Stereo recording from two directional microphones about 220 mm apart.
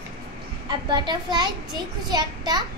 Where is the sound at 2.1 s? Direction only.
20° right (ahead or behind).